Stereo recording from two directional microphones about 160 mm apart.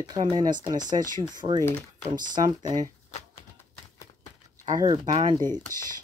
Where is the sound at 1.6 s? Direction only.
15° left (ahead or behind).